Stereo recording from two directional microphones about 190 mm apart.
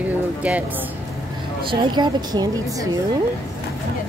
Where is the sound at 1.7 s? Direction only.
25° right (ahead or behind).